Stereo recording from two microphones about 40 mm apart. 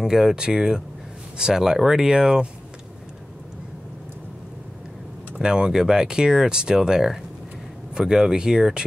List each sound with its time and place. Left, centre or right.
0.0 s speech: centre
5.4 s speech: centre